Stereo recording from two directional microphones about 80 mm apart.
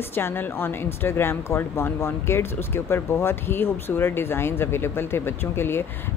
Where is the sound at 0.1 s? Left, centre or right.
Left.